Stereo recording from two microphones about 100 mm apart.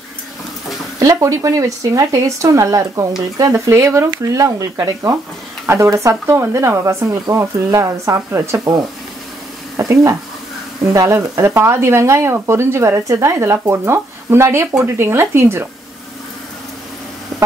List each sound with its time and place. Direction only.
0.9 s speech: 35° right (ahead or behind)
9.8 s speech: 30° right (ahead or behind)